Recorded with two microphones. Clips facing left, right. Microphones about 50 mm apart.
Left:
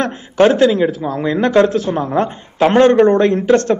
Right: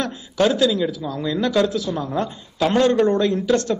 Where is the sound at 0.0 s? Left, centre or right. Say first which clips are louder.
Left 7 dB; left.